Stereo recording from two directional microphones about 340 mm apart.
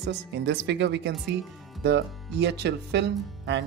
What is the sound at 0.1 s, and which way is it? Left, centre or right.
Speech, right.